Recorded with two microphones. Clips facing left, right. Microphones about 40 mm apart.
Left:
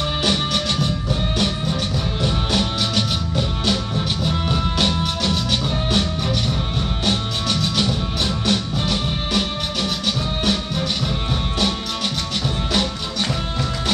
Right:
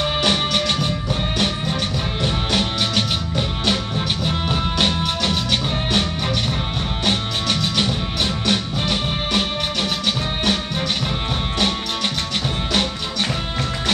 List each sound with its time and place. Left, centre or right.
0.0 s music: centre
2.2 s music: right
7.1 s music: right